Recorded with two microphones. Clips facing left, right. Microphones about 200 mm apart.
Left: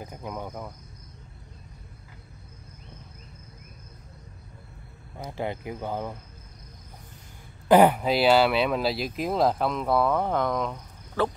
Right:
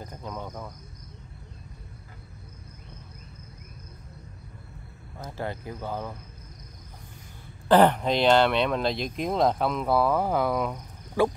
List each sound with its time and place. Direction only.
0.0 s speech: 10° left (ahead or behind)
5.2 s speech: 20° left (ahead or behind)
7.6 s speech: 10° left (ahead or behind); by 11.3 s 10° right (ahead or behind)